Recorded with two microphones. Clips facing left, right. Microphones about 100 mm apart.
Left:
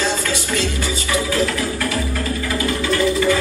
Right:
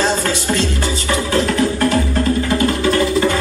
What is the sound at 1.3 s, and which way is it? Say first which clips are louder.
Music: right 4 dB; 30° right (ahead or behind).